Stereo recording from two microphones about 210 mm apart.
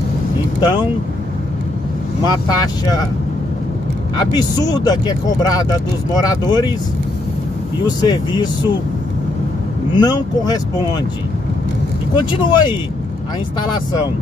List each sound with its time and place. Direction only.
0.6 s speech: 20° left (ahead or behind)
2.2 s speech: 20° left (ahead or behind)
4.2 s speech: 20° left (ahead or behind)
7.8 s speech: 20° left (ahead or behind)
9.9 s speech: 20° left (ahead or behind)
12.3 s speech: 25° left (ahead or behind)